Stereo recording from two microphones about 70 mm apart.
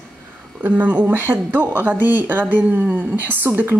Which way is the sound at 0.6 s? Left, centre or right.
Right.